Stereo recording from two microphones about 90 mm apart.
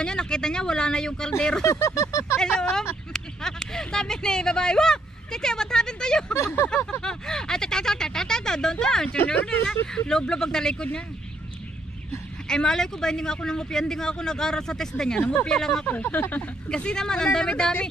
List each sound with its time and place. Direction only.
0.0 s speech: 10° left (ahead or behind)
1.6 s a sound: 30° left (ahead or behind)
3.1 s speech: 5° left (ahead or behind)
6.3 s speech: 30° left (ahead or behind)
6.9 s a sound: 10° left (ahead or behind)
9.1 s speech: 20° left (ahead or behind)
12.4 s speech: 5° left (ahead or behind)
15.9 s speech: 20° left (ahead or behind)